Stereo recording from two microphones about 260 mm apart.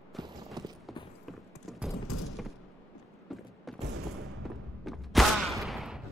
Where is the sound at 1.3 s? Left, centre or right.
Centre.